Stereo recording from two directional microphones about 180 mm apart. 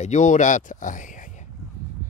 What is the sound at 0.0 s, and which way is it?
Speech, 40° left (ahead or behind).